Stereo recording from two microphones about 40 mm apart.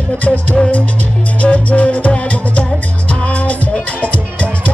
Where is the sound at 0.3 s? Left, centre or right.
Centre.